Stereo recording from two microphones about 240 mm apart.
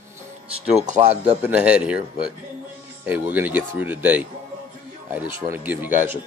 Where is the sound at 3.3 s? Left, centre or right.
Centre.